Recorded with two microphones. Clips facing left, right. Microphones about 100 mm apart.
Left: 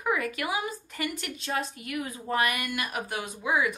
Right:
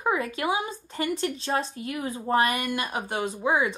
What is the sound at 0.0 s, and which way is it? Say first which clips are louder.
A woman's voice: right 3 dB; 25° right (ahead or behind).